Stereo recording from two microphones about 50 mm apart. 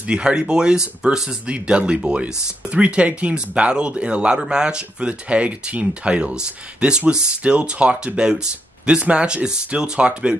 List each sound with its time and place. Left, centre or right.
0.0 s speech: centre
1.5 s speech: right